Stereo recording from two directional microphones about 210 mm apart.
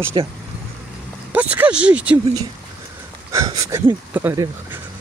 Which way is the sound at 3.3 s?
15° right (ahead or behind).